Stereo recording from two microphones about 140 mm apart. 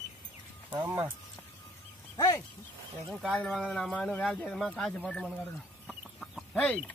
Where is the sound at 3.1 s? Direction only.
Centre (ahead or behind).